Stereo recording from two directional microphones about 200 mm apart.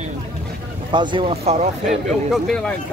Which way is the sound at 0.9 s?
25° right (ahead or behind).